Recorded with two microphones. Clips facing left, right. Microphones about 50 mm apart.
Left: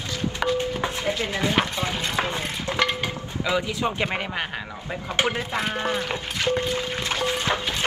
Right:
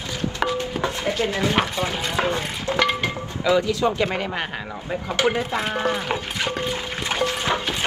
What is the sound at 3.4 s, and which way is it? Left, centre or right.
Speech, centre.